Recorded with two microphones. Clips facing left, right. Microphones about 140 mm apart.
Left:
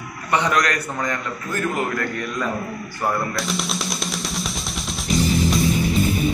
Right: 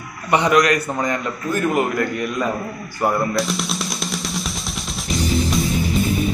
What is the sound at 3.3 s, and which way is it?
Music, centre (ahead or behind).